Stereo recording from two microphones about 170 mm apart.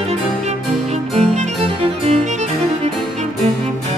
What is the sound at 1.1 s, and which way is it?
Music, 40° right (ahead or behind).